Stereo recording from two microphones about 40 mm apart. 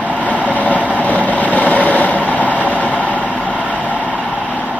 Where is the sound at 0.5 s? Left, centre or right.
Left.